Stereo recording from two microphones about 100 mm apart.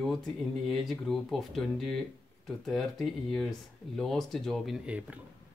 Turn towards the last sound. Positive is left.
turn(degrees=-15)  # may be behind; listen again after turning